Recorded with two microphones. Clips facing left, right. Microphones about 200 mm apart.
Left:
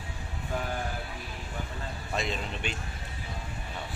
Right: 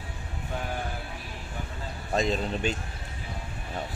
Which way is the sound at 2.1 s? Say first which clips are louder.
Right 7 dB; 40° right (ahead or behind).